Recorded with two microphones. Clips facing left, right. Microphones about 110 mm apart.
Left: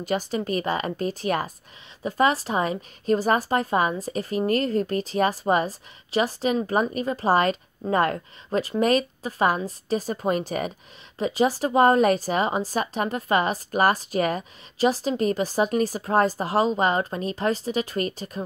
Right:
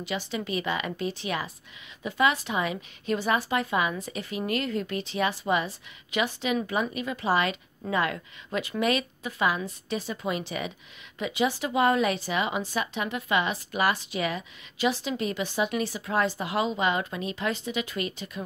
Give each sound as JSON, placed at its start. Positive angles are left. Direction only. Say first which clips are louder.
{"t": 0.0, "sound": "a woman's voice", "louder": "left 6 dB", "side_deg": 45}